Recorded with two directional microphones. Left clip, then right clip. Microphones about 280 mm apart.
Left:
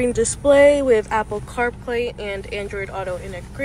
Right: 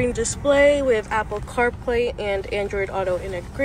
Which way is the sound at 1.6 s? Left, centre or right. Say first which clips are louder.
Right 2 dB; centre.